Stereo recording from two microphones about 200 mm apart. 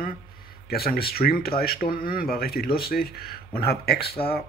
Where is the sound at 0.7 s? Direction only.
50° left (ahead or behind).